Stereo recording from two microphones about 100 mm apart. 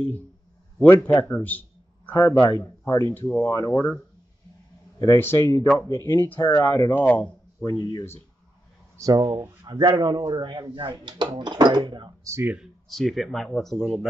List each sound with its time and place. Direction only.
0.7 s a man's voice: 20° left (ahead or behind)
2.1 s speech: 30° left (ahead or behind)
3.2 s speech: 20° left (ahead or behind)
4.9 s a man's voice: 35° left (ahead or behind); by 7.2 s 20° left (ahead or behind)
7.6 s speech: 45° left (ahead or behind)
8.9 s speech: 40° right (ahead or behind)
12.9 s speech: centre (ahead or behind)